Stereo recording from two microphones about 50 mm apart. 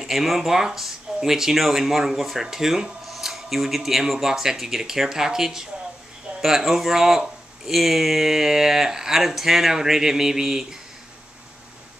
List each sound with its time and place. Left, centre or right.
0.0 s speech: centre